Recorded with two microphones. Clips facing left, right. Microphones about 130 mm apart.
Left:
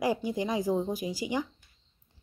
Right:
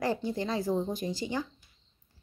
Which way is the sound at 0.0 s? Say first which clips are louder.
Left 2 dB; 10° left (ahead or behind).